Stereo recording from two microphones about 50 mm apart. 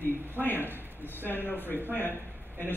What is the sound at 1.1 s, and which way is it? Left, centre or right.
A man's voice, left.